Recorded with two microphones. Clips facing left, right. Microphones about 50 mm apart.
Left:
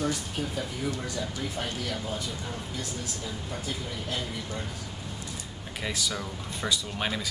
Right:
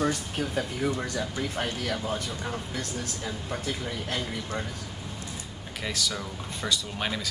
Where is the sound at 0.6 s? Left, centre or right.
Right.